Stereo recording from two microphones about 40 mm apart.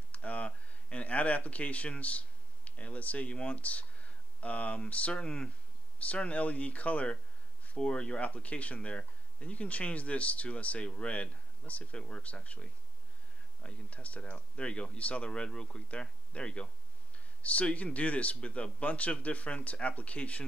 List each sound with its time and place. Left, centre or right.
0.1 s a sound: left
0.8 s speech: left
15.3 s speech: left